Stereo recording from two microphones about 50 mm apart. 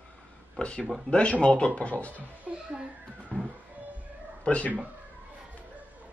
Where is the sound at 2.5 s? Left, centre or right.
Right.